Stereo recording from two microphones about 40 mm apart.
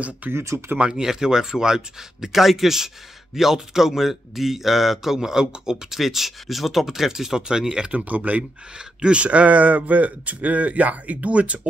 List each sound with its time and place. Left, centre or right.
0.3 s speech: right
0.7 s speech: centre
5.9 s speech: centre
7.9 s speech: right
8.7 s speech: right